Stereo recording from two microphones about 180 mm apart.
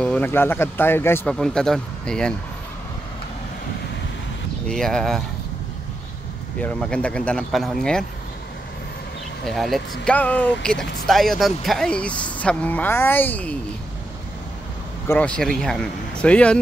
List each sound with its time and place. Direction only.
0.0 s speech: 5° left (ahead or behind)
4.6 s speech: 5° left (ahead or behind)
6.6 s speech: 5° left (ahead or behind)
9.5 s speech: centre (ahead or behind)
15.0 s speech: 5° left (ahead or behind)